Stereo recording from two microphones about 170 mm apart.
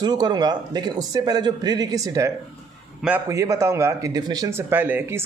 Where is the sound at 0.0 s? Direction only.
25° right (ahead or behind).